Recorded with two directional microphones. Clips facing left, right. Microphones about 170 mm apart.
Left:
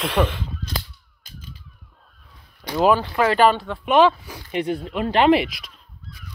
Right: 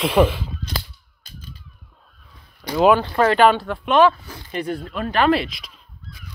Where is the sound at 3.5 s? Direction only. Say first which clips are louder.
Right 3 dB; 5° right (ahead or behind).